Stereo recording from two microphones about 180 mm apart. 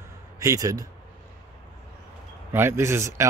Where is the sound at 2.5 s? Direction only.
10° right (ahead or behind).